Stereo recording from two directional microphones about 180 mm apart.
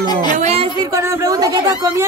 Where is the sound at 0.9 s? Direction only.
15° right (ahead or behind).